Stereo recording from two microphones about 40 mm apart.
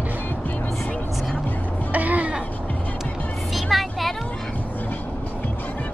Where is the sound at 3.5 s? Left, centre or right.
Centre.